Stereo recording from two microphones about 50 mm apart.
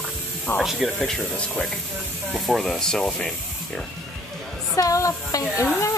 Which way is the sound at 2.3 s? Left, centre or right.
Centre.